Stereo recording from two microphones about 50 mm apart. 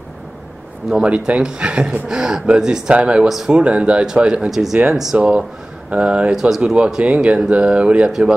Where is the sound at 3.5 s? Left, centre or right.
Right.